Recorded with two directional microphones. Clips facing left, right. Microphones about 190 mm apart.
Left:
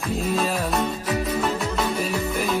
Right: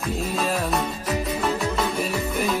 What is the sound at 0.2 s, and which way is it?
Music, centre (ahead or behind).